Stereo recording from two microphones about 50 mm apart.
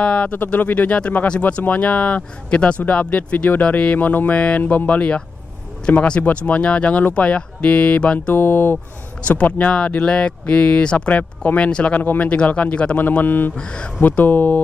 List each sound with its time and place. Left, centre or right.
0.0 s speech: left
0.3 s speech: left
1.4 s speech: left
8.4 s speech: left
9.2 s speech: left
12.0 s speech: left
12.3 s speech: left
12.9 s speech: left
13.6 s speech: centre
14.2 s speech: left